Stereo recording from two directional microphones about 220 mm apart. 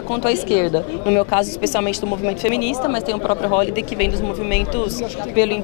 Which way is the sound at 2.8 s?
20° left (ahead or behind).